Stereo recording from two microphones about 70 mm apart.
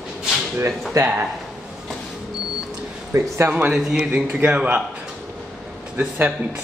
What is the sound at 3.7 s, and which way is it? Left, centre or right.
Speech, centre.